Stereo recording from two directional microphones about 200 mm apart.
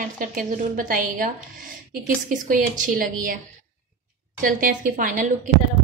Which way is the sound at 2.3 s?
40° right (ahead or behind).